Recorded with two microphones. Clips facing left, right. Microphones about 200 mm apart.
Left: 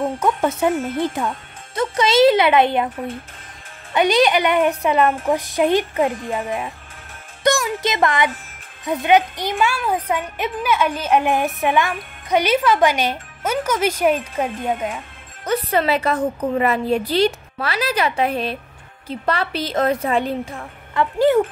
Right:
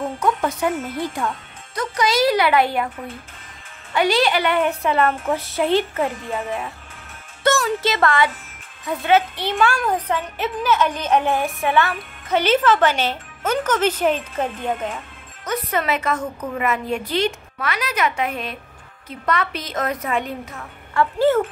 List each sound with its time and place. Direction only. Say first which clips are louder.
0.2 s speech: left 1 dB; 25° left (ahead or behind)
0.7 s speech: left 4 dB; 50° left (ahead or behind)
1.8 s speech: left 5 dB; 25° left (ahead or behind)
3.9 s speech: left 3 dB; 20° left (ahead or behind)
15.4 s a woman's voice: left 4 dB; 30° left (ahead or behind)
20.9 s speech: left 1 dB; 15° left (ahead or behind)